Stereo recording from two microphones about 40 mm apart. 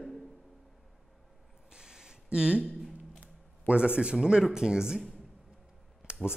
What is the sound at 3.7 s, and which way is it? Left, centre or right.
Speech, right.